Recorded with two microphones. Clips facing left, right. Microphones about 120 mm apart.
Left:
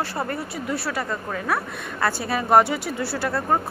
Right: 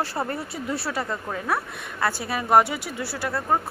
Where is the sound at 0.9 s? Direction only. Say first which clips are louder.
Left 1 dB; 20° right (ahead or behind).